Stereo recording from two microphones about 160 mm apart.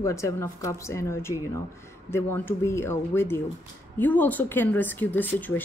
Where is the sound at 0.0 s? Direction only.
20° left (ahead or behind).